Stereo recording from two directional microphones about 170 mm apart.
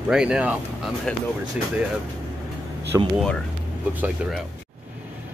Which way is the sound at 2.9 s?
15° right (ahead or behind).